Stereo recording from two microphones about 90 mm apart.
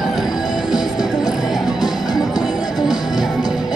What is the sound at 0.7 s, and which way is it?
Music, 50° left (ahead or behind).